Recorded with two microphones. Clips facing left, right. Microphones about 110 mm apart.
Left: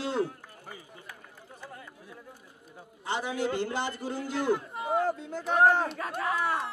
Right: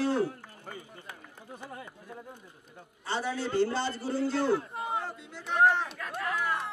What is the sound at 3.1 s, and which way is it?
A man's voice, 15° left (ahead or behind).